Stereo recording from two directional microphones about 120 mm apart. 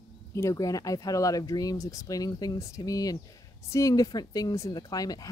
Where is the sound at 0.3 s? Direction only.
25° left (ahead or behind).